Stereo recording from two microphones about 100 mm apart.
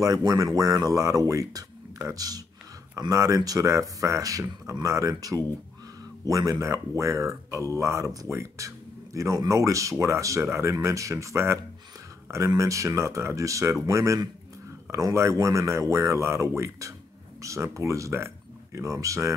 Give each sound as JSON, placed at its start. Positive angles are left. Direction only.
{"t": 0.0, "sound": "speech", "side_deg": -35}